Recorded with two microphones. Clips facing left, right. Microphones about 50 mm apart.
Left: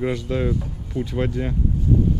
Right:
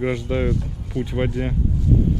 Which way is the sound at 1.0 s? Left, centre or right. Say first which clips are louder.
Right 1 dB; right.